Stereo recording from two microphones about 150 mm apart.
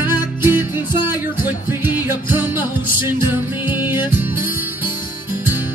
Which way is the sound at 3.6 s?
30° left (ahead or behind).